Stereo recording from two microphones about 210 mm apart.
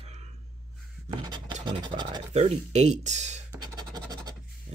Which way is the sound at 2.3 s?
30° right (ahead or behind).